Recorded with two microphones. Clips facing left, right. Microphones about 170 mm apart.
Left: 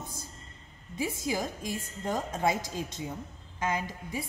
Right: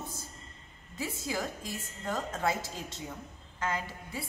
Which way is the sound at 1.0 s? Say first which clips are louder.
Left 4 dB; 15° left (ahead or behind).